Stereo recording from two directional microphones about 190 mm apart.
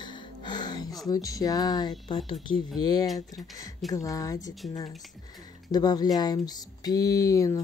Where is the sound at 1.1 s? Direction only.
20° left (ahead or behind).